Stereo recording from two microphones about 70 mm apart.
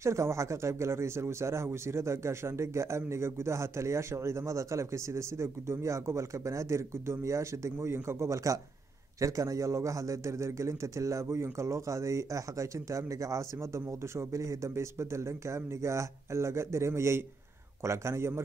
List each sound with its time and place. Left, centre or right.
0.0 s speech: right